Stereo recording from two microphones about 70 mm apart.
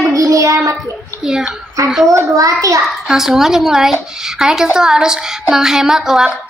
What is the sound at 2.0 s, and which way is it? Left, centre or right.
Child singing, right.